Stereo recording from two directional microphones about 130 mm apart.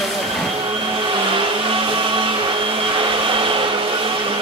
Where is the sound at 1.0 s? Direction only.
40° right (ahead or behind).